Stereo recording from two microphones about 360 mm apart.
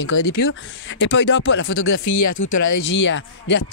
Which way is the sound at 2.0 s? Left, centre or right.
Left.